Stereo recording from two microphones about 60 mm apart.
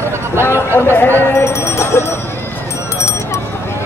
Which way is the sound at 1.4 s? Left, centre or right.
Left.